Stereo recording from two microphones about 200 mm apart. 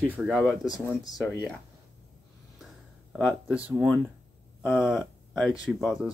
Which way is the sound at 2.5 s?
Centre (ahead or behind).